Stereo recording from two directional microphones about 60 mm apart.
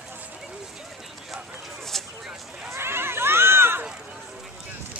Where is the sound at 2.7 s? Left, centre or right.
Right.